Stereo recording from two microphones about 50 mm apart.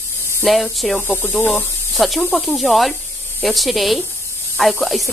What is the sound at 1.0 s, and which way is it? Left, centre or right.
Speech, left.